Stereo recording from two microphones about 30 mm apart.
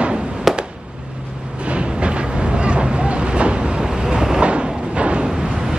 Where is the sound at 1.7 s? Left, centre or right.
Right.